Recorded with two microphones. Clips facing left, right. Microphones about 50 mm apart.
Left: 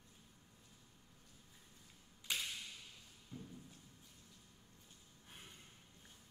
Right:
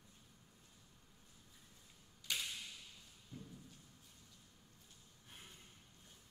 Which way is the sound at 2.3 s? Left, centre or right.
Centre.